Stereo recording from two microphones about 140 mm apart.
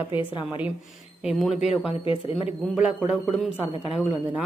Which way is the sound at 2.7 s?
5° right (ahead or behind).